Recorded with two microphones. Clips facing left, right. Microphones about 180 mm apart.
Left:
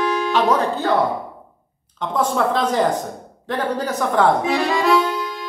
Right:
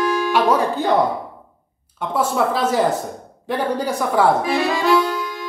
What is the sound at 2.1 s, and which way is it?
Speech, 5° right (ahead or behind).